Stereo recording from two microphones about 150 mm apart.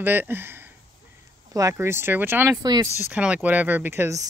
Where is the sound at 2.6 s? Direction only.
25° right (ahead or behind).